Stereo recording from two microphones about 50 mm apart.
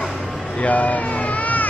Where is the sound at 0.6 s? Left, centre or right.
Left.